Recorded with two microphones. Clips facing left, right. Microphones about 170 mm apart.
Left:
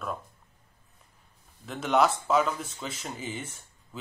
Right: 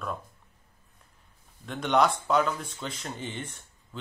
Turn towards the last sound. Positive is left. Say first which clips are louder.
# even
turn(degrees=5)  # may be behind; listen again after turning